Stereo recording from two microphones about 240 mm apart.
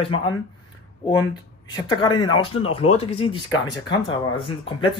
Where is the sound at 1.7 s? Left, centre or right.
Centre.